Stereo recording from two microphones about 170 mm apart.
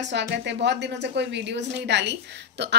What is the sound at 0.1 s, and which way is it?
A woman's voice, 85° right.